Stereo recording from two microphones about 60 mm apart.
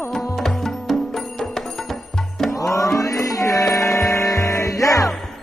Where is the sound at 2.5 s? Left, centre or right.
Left.